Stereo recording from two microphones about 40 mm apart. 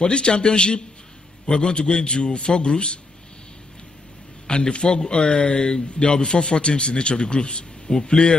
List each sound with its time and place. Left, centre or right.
0.0 s speech: left
4.5 s speech: left